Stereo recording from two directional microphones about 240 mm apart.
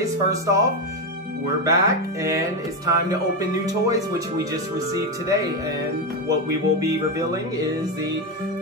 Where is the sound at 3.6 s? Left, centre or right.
Centre.